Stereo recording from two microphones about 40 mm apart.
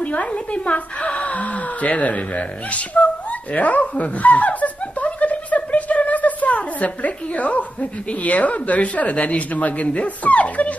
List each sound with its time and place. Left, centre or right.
0.0 s speech: left